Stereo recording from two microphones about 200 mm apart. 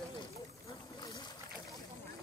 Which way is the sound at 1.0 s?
20° left (ahead or behind).